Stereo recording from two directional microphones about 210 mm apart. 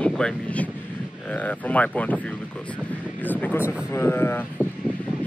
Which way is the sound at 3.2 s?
10° left (ahead or behind).